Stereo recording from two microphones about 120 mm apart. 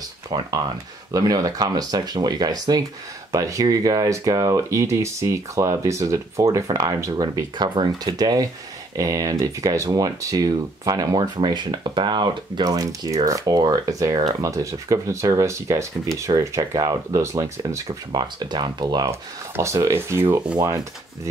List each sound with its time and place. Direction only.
0.3 s speech: 35° right (ahead or behind)
18.5 s speech: 35° right (ahead or behind)
19.0 s speech: 25° right (ahead or behind)
20.5 s speech: 30° right (ahead or behind)